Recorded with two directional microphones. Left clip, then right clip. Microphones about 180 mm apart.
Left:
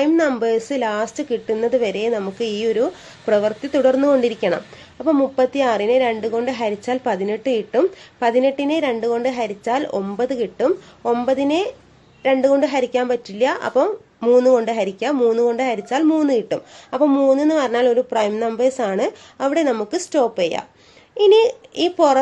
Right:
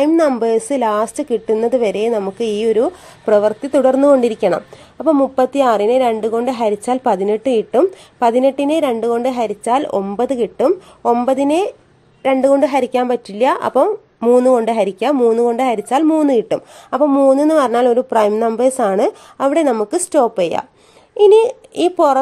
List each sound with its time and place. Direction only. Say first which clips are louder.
0.0 s a child's voice: right 4 dB; 45° right (ahead or behind)